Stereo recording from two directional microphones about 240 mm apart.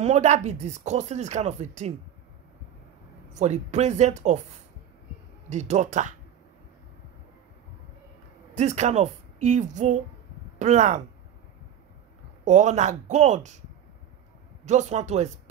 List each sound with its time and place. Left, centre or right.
0.0 s speech: right
3.3 s speech: right
8.5 s speech: right
12.4 s speech: right
14.6 s speech: right